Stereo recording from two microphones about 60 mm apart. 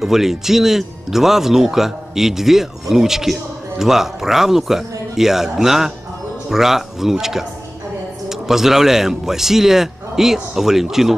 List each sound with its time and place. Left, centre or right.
0.0 s a man's voice: centre